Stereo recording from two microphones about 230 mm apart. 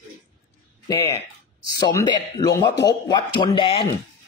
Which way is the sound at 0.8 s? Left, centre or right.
Centre.